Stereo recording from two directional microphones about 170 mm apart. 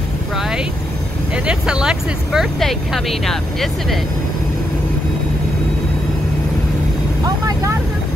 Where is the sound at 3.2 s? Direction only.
Centre (ahead or behind).